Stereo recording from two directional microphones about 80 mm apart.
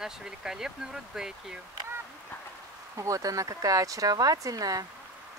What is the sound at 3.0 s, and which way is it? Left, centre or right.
Speech, right.